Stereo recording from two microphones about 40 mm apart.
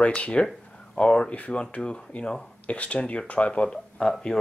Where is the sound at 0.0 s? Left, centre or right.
Left.